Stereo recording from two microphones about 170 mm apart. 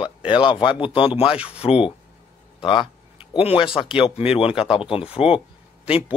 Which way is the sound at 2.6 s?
30° left (ahead or behind).